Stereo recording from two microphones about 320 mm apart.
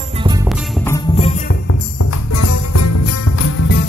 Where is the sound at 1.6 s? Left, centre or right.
Left.